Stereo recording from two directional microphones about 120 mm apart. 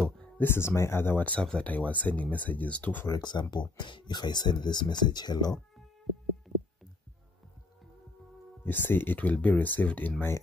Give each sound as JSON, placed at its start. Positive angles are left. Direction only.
{"t": 0.4, "sound": "speech", "side_deg": 20}
{"t": 3.1, "sound": "speech", "side_deg": 40}
{"t": 8.6, "sound": "speech", "side_deg": 15}